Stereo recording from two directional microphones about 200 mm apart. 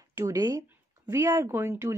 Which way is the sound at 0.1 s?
15° right (ahead or behind).